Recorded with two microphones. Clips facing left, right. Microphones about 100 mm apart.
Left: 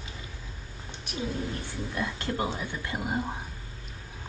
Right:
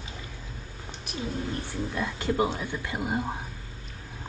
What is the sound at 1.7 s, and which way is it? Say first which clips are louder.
Speech: right 2 dB; 20° right (ahead or behind).